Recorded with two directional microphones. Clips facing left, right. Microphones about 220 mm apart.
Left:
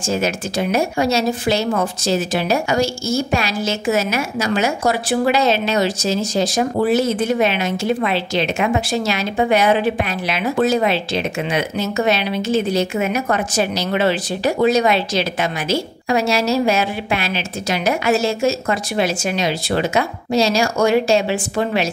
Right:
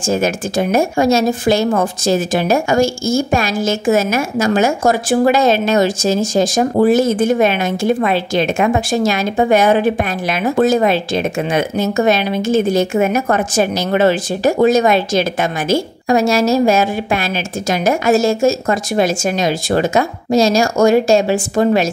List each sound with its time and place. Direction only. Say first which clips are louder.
0.0 s a woman's voice: right 4 dB; 50° right (ahead or behind)